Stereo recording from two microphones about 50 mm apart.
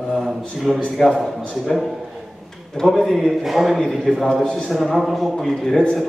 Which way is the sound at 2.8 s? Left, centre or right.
Centre.